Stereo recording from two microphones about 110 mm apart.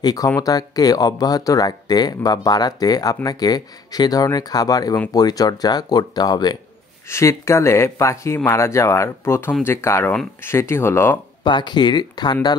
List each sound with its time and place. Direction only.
0.0 s speech: 35° left (ahead or behind)
7.1 s speech: 25° left (ahead or behind)
11.4 s speech: 45° left (ahead or behind)